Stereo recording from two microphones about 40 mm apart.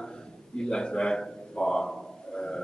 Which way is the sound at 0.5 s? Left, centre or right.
Left.